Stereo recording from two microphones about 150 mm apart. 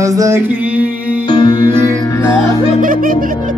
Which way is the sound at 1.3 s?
30° left (ahead or behind).